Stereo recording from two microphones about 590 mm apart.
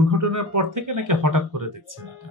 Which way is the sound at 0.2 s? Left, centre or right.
Right.